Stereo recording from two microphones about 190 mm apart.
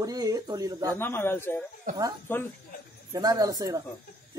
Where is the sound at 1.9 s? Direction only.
45° right (ahead or behind).